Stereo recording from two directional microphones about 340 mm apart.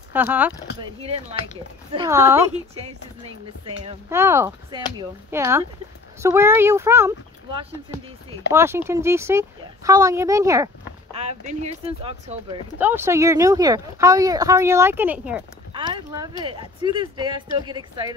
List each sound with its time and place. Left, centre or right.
0.1 s speech: centre
2.0 s speech: centre
3.6 s speech: centre